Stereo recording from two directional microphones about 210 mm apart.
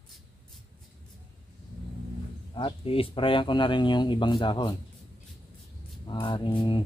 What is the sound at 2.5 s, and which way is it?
Speech, 25° left (ahead or behind).